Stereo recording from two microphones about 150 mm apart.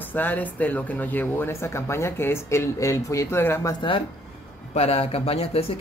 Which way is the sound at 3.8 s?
35° left (ahead or behind).